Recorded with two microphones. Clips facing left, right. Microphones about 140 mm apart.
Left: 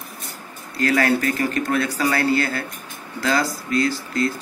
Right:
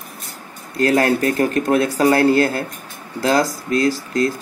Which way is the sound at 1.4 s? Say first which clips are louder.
Right 5 dB; 50° right (ahead or behind).